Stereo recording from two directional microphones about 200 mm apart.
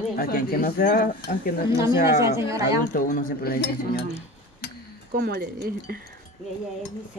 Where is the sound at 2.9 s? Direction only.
45° left (ahead or behind).